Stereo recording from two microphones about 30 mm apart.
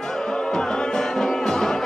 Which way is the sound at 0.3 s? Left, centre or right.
Left.